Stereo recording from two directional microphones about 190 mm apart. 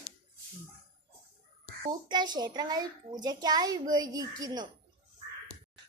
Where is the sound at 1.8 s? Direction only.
25° right (ahead or behind).